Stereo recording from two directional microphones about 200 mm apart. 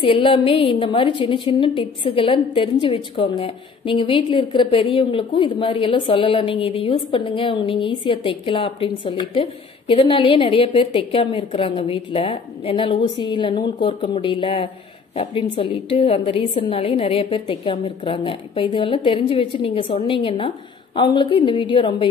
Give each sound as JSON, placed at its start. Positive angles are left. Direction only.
{"t": 0.0, "sound": "a woman's voice", "side_deg": 25}